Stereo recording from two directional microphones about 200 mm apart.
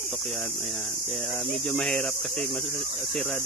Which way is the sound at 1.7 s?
Centre (ahead or behind).